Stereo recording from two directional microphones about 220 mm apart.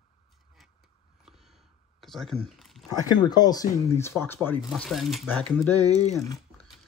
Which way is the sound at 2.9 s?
15° left (ahead or behind).